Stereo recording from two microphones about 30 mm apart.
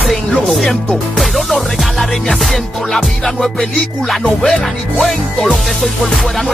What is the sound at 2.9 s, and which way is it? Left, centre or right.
Music, centre.